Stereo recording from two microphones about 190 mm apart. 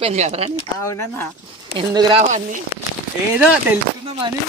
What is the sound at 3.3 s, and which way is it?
Speech, 5° right (ahead or behind).